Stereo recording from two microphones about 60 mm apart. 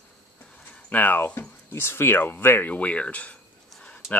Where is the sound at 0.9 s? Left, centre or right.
Left.